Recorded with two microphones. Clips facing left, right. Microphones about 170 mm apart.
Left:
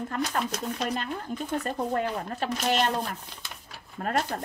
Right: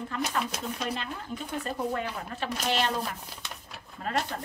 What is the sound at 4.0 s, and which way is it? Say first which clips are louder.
Speech: left 4 dB; 50° left (ahead or behind).